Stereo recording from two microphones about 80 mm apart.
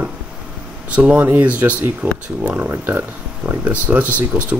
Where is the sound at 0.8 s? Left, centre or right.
Centre.